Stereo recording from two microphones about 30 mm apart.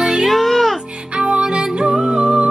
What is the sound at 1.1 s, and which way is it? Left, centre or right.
Music, right.